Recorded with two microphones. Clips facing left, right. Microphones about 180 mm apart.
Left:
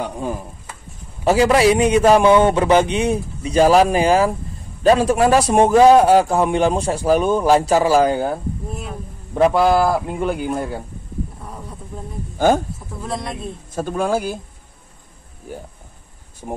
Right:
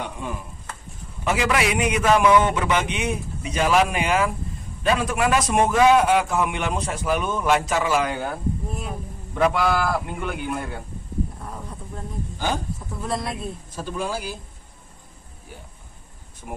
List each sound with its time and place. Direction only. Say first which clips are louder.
0.0 s chopping: left 6 dB; 35° left (ahead or behind)
1.2 s a man's voice: left 8 dB; 35° left (ahead or behind)
9.3 s a man's voice: left 6 dB; 30° left (ahead or behind)
12.4 s speech: left 11 dB; 50° left (ahead or behind)
13.0 s a woman's voice: left 1 dB; centre (ahead or behind)
13.7 s speech: left 9 dB; 50° left (ahead or behind)
16.4 s a man's voice: left 7 dB; 35° left (ahead or behind)